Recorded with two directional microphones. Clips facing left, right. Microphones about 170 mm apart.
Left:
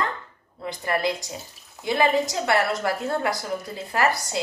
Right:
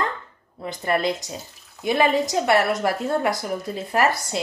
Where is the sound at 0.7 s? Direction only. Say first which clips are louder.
Right 2 dB; 20° right (ahead or behind).